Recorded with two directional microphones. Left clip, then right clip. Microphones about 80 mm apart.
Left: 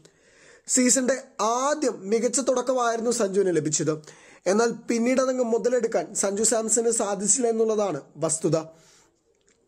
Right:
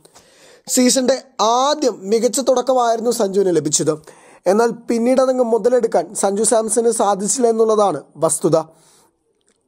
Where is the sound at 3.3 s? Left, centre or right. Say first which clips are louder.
Right 7 dB; right.